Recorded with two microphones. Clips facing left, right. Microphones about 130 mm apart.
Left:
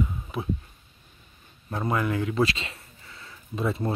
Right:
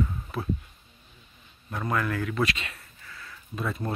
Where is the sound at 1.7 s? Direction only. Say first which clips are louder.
Left 2 dB; 20° left (ahead or behind).